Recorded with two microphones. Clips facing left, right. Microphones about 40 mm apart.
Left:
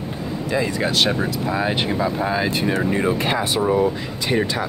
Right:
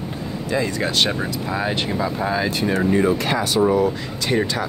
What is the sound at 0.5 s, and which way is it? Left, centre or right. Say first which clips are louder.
Speech: even; centre.